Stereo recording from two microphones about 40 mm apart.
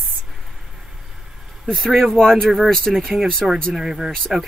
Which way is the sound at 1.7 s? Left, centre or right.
Centre.